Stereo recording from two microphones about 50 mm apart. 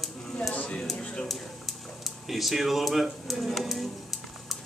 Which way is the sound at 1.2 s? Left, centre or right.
Centre.